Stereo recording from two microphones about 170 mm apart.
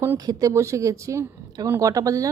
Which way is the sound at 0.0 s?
20° right (ahead or behind).